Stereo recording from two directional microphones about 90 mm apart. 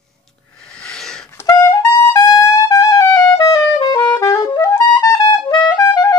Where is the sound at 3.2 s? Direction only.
40° left (ahead or behind).